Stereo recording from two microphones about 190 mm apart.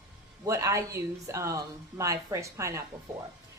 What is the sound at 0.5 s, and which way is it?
Speech, 15° right (ahead or behind).